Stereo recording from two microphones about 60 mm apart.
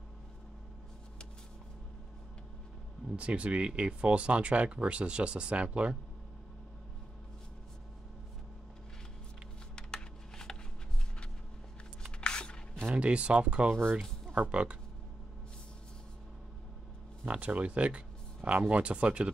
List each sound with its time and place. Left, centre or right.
3.2 s speech: right
9.9 s typing: centre
12.2 s a sound: centre
12.8 s speech: centre
17.3 s speech: right